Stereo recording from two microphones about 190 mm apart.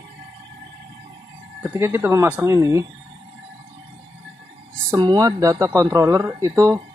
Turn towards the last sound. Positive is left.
turn(degrees=-15)  # may be behind; listen again after turning